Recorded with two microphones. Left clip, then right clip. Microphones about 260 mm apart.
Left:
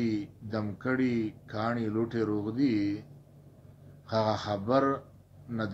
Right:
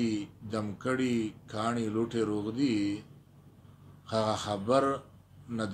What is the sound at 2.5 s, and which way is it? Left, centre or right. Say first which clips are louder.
Speech: left 2 dB; right.